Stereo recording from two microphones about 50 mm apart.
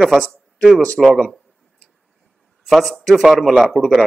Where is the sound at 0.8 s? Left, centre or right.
Centre.